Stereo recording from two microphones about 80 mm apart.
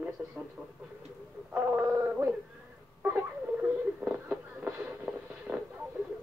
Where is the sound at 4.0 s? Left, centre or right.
Centre.